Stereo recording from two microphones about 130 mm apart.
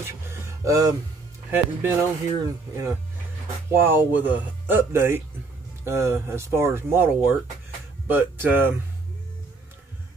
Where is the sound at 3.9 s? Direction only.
15° right (ahead or behind).